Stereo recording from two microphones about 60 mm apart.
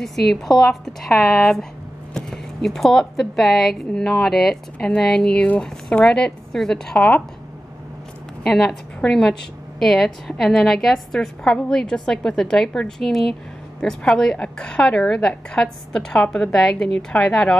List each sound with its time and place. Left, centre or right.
0.6 s a woman's voice: centre
4.7 s a woman's voice: centre
8.5 s a woman's voice: centre